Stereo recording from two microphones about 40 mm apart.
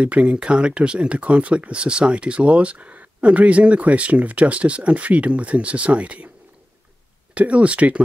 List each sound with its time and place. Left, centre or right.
0.0 s speech: right
7.3 s speech: right